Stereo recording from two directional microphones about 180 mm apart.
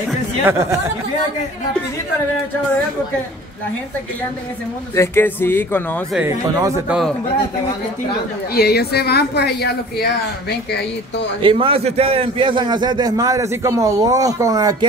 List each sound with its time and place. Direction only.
0.5 s speech: 15° right (ahead or behind)
4.9 s speech: 15° left (ahead or behind)
6.1 s speech: 10° right (ahead or behind)
8.5 s speech: 60° left (ahead or behind)
11.4 s a man's voice: 30° right (ahead or behind)